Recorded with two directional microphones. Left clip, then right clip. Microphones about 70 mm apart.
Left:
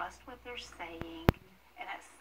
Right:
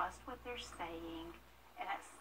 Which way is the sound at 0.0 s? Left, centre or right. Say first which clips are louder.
Even; centre.